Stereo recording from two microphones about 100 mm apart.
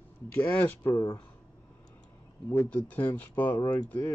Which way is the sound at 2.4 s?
20° left (ahead or behind).